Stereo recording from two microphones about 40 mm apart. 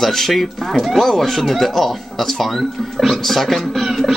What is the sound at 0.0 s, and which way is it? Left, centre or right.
Speech, centre.